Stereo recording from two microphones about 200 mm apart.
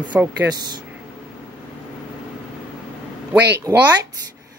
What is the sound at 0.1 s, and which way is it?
Speech, 10° right (ahead or behind).